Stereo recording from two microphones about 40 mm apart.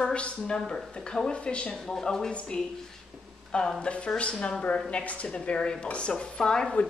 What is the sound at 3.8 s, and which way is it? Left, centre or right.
A woman's voice, left.